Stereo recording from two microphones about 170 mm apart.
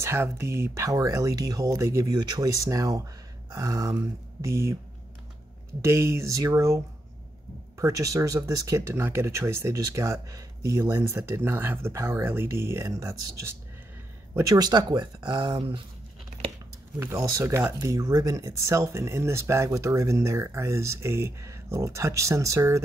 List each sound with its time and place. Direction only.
0.0 s speech: 15° right (ahead or behind)
5.8 s speech: 15° right (ahead or behind)
17.0 s speech: 20° right (ahead or behind)